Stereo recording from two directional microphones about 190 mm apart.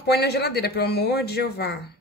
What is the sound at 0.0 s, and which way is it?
A woman's voice, 60° left (ahead or behind).